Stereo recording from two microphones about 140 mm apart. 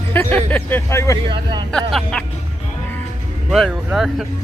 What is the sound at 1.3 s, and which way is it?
Speech, 30° right (ahead or behind).